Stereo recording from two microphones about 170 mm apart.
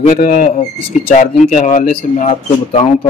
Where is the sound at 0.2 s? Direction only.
50° left (ahead or behind).